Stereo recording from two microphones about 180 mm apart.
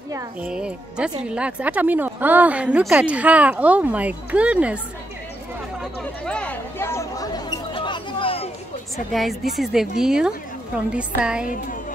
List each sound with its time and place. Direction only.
0.4 s a woman's voice: 5° right (ahead or behind)
5.8 s chatter: 5° left (ahead or behind); by 8.5 s 30° left (ahead or behind)
8.9 s a woman's voice: centre (ahead or behind)